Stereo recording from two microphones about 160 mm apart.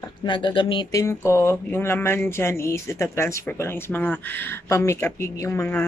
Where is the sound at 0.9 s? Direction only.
20° left (ahead or behind).